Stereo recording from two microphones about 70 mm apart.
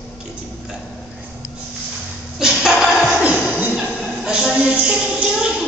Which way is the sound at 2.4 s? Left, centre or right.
Centre.